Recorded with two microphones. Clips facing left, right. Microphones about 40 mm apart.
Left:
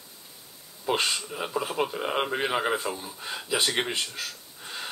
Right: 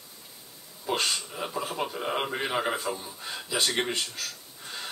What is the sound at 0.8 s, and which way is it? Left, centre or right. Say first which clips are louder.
Speech: left 2 dB; centre.